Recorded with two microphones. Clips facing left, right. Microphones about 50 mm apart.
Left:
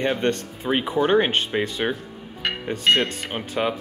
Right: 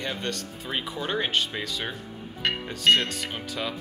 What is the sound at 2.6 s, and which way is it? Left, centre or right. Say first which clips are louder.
Speech: left 2 dB; left.